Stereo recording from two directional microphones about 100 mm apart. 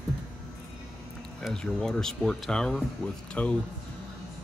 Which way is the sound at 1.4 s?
5° left (ahead or behind).